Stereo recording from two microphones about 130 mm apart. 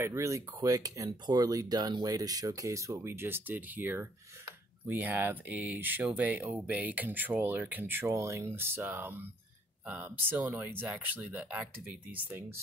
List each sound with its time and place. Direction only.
0.0 s speech: 20° right (ahead or behind)